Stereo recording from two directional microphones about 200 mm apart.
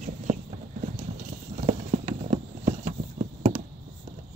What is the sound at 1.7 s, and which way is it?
Clip-clop, 35° right (ahead or behind).